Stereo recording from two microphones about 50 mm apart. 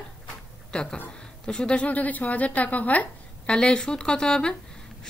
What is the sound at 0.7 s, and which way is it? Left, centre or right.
A man's voice, centre.